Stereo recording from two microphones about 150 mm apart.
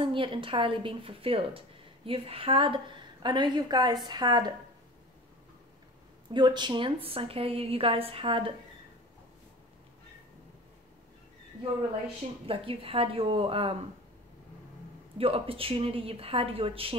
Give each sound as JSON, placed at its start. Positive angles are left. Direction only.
{"t": 0.0, "sound": "a woman's voice", "side_deg": -35}
{"t": 6.3, "sound": "a woman's voice", "side_deg": -30}
{"t": 12.4, "sound": "a woman's voice", "side_deg": -40}
{"t": 15.1, "sound": "a woman's voice", "side_deg": -40}